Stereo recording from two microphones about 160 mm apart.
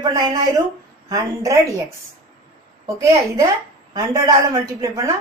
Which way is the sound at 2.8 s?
20° right (ahead or behind).